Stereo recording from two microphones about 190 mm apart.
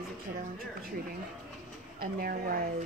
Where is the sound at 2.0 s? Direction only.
50° right (ahead or behind).